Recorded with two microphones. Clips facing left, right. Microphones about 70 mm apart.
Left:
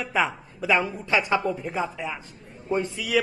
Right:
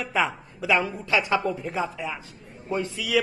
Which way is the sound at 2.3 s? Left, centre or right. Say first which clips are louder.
Left 3 dB; centre.